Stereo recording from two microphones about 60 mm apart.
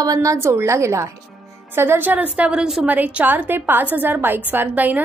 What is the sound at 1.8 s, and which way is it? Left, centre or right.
Speech, right.